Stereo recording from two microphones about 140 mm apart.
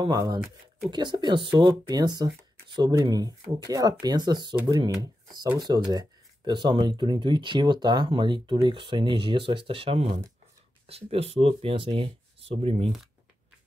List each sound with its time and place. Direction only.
0.0 s speech: 30° right (ahead or behind); by 12.9 s 45° right (ahead or behind)